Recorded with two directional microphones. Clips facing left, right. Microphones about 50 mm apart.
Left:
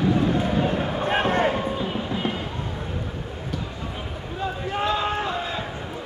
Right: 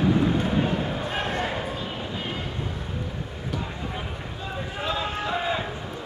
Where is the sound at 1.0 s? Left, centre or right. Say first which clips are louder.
Left 6 dB; left.